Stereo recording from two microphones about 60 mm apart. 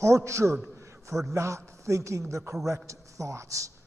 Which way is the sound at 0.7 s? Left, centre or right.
Right.